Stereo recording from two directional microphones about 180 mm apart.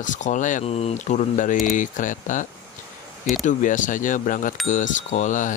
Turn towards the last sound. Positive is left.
turn(degrees=45)  # may be behind; listen again after turning